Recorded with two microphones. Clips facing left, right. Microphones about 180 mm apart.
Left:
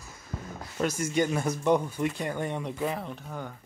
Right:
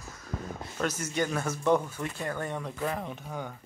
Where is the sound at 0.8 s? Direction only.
10° left (ahead or behind).